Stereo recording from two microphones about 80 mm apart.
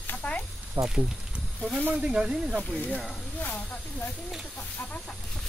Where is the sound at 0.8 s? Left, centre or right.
Right.